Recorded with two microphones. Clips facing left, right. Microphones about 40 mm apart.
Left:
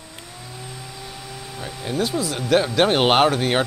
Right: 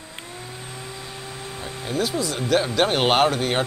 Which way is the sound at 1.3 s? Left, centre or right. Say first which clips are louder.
Left 1 dB; right.